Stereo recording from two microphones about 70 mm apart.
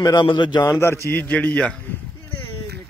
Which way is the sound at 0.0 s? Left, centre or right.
Left.